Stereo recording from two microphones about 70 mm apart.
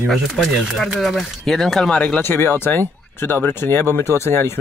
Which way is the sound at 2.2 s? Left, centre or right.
Left.